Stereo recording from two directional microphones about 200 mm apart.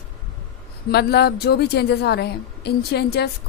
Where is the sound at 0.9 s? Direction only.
55° left (ahead or behind).